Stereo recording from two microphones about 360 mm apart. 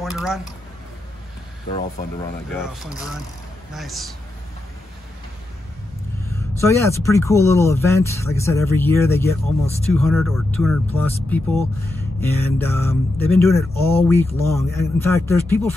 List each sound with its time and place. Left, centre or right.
0.0 s speech: centre
1.7 s speech: centre
2.6 s speech: centre
6.3 s speech: centre